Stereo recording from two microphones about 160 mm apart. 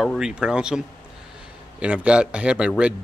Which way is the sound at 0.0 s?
5° right (ahead or behind).